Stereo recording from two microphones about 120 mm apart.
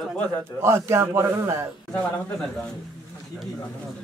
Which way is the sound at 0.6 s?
20° right (ahead or behind).